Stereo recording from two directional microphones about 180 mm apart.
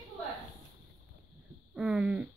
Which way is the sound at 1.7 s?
5° right (ahead or behind).